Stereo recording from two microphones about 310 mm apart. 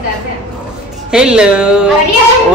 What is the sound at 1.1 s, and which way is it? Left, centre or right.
Speech, centre.